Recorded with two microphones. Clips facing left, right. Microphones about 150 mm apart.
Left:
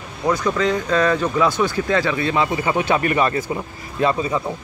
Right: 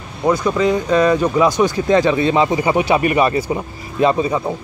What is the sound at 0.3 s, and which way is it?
Speech, 10° right (ahead or behind).